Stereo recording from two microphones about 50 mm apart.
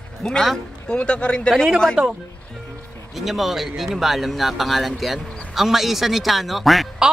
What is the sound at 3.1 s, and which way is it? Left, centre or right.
Speech, centre.